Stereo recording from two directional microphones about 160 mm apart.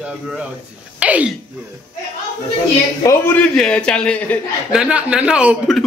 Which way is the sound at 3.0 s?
20° left (ahead or behind).